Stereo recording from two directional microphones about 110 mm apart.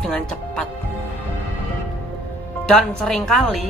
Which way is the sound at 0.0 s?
10° left (ahead or behind).